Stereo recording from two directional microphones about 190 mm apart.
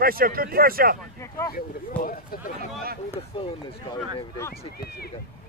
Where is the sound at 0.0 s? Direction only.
50° right (ahead or behind).